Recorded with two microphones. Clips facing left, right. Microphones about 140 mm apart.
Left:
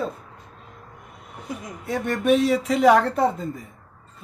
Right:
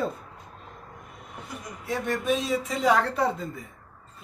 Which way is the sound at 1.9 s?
60° left (ahead or behind).